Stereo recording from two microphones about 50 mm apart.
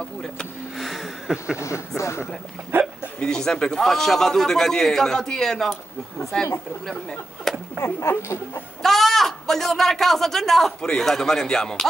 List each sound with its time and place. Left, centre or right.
0.7 s a sound: centre
1.6 s speech: left
2.7 s speech: right
3.2 s a man's voice: centre
6.9 s a man's voice: centre
7.8 s speech: left
8.8 s a man's voice: centre